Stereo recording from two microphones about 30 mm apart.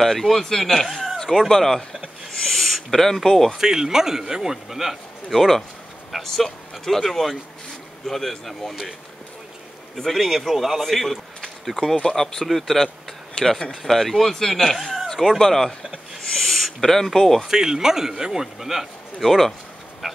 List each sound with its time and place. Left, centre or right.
0.0 s speech: centre
0.8 s speech: centre
1.5 s speech: centre
1.8 s owl: centre
3.2 s speech: centre
3.5 s speech: centre
5.3 s speech: centre
9.9 s speech: centre
10.8 s speech: centre
14.8 s a sound: centre
15.3 s speech: centre
17.5 s speech: centre
19.2 s speech: centre